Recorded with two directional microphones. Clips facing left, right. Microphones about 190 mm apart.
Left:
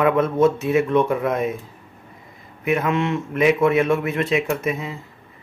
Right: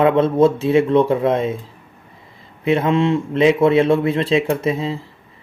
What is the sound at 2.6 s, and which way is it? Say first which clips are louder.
Speech: right 4 dB; 30° right (ahead or behind).